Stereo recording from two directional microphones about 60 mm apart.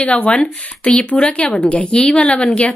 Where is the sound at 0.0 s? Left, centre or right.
Centre.